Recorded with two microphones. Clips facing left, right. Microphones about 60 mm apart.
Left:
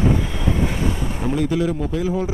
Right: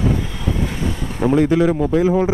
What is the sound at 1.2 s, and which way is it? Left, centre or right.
Speech, right.